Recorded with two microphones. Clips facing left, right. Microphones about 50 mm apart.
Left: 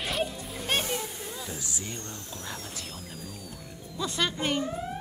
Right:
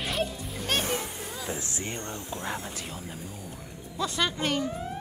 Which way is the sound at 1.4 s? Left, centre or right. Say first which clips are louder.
Right 3 dB; right.